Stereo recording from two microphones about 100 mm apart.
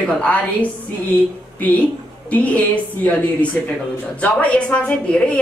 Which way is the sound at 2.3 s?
15° left (ahead or behind).